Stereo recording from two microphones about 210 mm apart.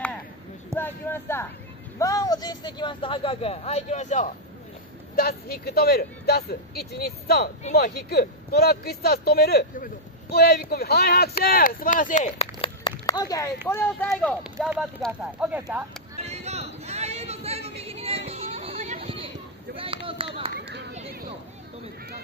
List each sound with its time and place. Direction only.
0.7 s a man's voice: 10° left (ahead or behind); by 4.3 s 35° left (ahead or behind)
5.1 s speech: 45° left (ahead or behind); by 15.8 s 5° right (ahead or behind)
16.2 s chatter: 30° right (ahead or behind)
20.2 s a sound: 25° right (ahead or behind)